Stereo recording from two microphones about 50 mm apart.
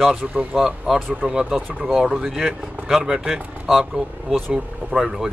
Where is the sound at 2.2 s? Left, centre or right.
Centre.